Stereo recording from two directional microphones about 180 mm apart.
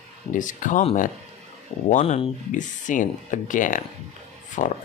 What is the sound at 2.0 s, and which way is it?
Speech, 40° left (ahead or behind).